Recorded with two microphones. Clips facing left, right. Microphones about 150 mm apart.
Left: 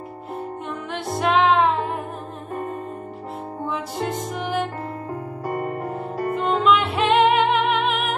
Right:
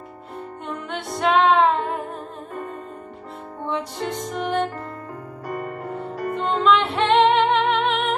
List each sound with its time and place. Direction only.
0.7 s music: centre (ahead or behind)
3.6 s music: 5° left (ahead or behind)
5.5 s music: 40° left (ahead or behind)
6.3 s music: 5° left (ahead or behind)